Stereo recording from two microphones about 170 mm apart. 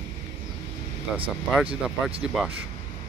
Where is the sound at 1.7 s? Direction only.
35° right (ahead or behind).